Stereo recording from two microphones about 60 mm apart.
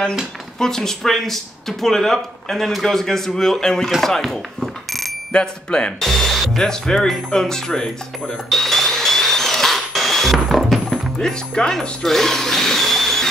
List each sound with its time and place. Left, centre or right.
0.6 s speech: centre
3.9 s alarm: centre
5.3 s speech: centre
5.9 s music: centre